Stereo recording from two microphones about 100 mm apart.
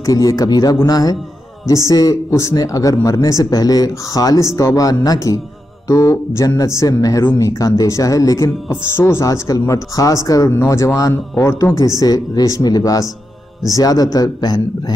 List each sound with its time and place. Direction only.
0.0 s speech: 35° left (ahead or behind)